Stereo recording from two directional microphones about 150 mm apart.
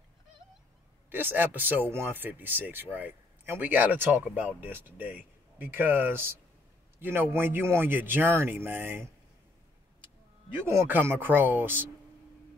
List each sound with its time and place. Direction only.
1.1 s speech: 15° right (ahead or behind)
10.5 s speech: 15° right (ahead or behind)